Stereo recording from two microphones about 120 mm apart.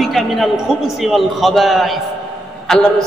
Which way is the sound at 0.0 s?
Centre (ahead or behind).